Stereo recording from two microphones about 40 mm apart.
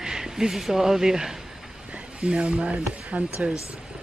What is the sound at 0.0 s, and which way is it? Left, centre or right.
Speech, centre.